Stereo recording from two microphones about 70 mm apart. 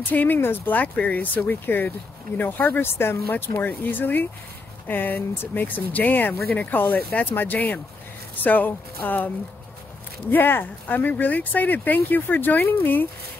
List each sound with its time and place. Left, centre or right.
0.1 s speech: left
10.3 s speech: left